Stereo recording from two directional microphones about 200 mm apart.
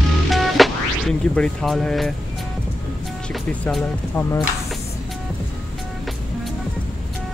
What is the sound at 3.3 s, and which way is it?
Speech, 5° left (ahead or behind).